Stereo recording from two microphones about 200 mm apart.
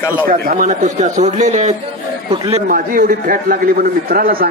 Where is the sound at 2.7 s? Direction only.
45° right (ahead or behind).